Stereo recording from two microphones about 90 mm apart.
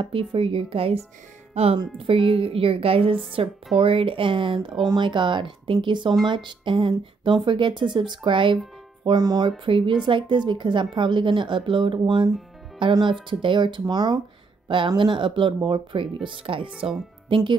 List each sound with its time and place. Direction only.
0.0 s a woman's voice: 70° right (ahead or behind); by 0.9 s 90° right
2.0 s a woman's voice: 85° right
4.8 s a woman's voice: 60° right (ahead or behind)
9.0 s a woman's voice: 50° right (ahead or behind)
9.7 s a woman's voice: 70° right (ahead or behind)
16.7 s speech: 5° right (ahead or behind)
17.3 s speech: 70° right (ahead or behind)